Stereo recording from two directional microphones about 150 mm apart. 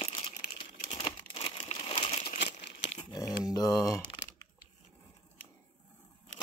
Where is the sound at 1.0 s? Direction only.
35° left (ahead or behind).